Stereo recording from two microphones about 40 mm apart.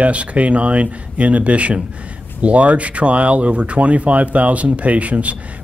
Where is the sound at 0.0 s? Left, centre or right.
Right.